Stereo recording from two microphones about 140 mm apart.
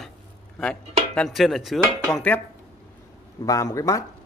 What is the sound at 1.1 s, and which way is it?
A man's voice, centre (ahead or behind).